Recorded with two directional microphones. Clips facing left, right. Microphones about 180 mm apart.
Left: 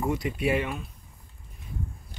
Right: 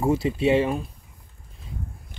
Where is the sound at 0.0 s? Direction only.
25° right (ahead or behind).